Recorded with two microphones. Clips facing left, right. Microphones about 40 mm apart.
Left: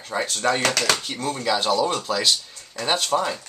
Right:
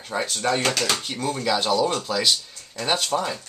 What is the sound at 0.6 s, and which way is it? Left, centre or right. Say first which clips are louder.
Speech: left 2 dB; left.